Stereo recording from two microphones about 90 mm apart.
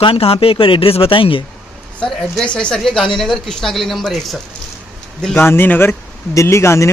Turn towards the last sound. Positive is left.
turn(degrees=30)  # may be behind; listen again after turning